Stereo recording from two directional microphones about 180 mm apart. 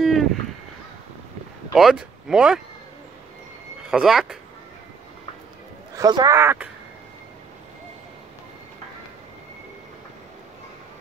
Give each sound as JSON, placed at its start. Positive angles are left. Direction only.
{"t": 0.0, "sound": "a sound", "side_deg": 0}
{"t": 1.7, "sound": "speech", "side_deg": -5}
{"t": 3.9, "sound": "speech", "side_deg": 0}
{"t": 5.9, "sound": "speech", "side_deg": -20}